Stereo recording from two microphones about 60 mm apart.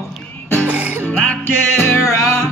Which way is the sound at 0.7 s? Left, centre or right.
Right.